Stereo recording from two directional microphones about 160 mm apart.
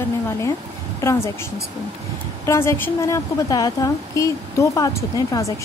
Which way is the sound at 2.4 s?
15° left (ahead or behind).